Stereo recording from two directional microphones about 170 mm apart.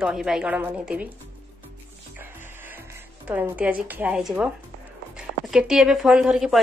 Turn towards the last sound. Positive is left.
turn(degrees=-5)  # may be behind; listen again after turning